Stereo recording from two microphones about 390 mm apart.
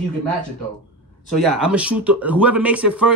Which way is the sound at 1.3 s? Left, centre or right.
Centre.